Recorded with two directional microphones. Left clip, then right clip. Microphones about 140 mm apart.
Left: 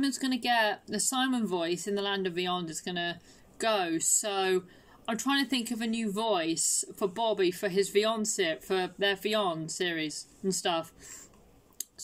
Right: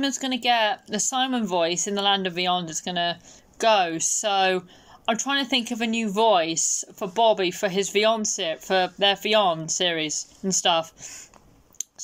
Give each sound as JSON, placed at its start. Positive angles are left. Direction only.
{"t": 0.0, "sound": "speech", "side_deg": 40}
{"t": 6.6, "sound": "speech", "side_deg": -25}
{"t": 7.0, "sound": "speech", "side_deg": 35}